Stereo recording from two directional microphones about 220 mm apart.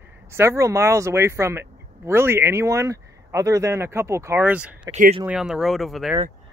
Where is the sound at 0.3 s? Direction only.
10° right (ahead or behind).